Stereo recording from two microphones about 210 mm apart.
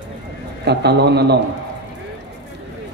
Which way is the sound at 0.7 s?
50° right (ahead or behind).